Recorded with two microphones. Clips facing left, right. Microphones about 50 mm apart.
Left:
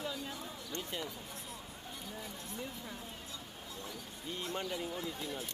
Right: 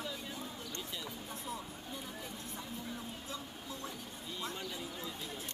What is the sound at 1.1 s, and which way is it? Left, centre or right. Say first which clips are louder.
Speech: right 4 dB; right.